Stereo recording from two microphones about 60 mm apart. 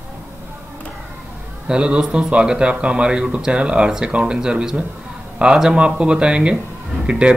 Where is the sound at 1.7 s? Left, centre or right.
Centre.